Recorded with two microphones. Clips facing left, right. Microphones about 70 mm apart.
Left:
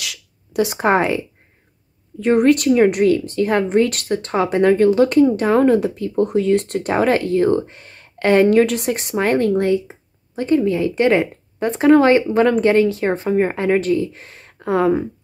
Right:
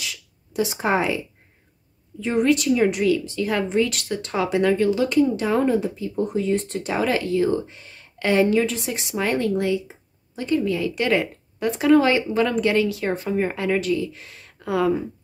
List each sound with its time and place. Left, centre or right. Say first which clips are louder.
0.0 s a sound: left 2 dB; left
2.1 s speech: left 6 dB; left
11.7 s speech: left 5 dB; left